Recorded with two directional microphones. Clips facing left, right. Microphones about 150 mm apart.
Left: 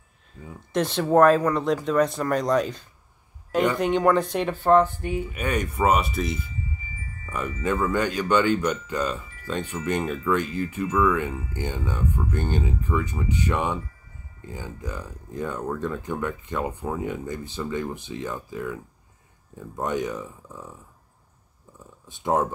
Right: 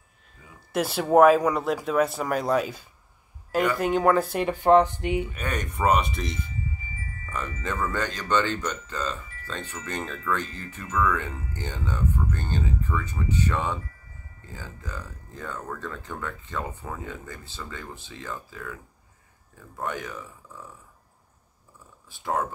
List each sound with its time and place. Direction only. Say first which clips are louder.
0.7 s speech: even; 10° right (ahead or behind)
5.2 s speech: left 4 dB; 10° left (ahead or behind)
22.1 s speech: left 5 dB; 20° left (ahead or behind)